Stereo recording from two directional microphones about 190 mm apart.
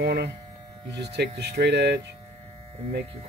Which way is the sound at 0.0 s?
60° right (ahead or behind).